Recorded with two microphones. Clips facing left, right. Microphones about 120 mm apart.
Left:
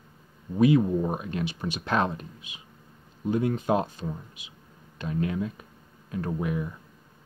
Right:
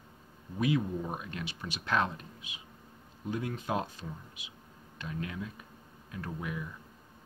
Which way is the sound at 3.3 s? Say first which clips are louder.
Left 9 dB; 30° left (ahead or behind).